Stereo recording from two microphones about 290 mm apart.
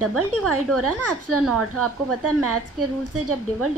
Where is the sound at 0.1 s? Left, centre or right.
Right.